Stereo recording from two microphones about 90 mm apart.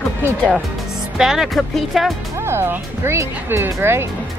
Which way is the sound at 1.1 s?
5° right (ahead or behind).